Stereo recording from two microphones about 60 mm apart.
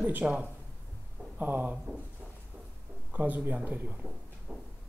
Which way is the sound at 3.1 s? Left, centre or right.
Right.